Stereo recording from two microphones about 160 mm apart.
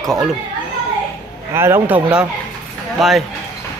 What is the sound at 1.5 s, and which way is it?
A man's voice, 15° right (ahead or behind).